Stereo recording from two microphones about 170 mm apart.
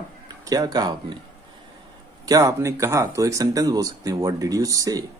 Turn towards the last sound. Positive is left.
turn(degrees=-20)  # may be behind; listen again after turning